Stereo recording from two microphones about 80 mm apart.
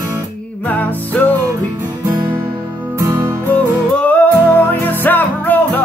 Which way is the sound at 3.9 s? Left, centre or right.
Centre.